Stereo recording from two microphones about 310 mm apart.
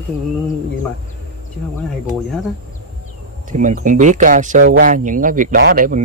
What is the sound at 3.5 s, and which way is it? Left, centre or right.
Speech, right.